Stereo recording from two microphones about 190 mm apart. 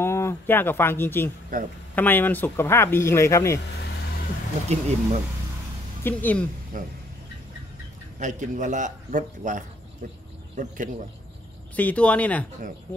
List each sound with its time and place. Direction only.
0.0 s speech: 15° left (ahead or behind)
1.5 s speech: 45° right (ahead or behind)
2.0 s speech: 10° left (ahead or behind)
4.7 s a man's voice: 35° right (ahead or behind)
6.0 s speech: 10° left (ahead or behind)
6.7 s speech: 45° right (ahead or behind)
8.2 s a man's voice: 40° right (ahead or behind)
11.7 s speech: 10° left (ahead or behind)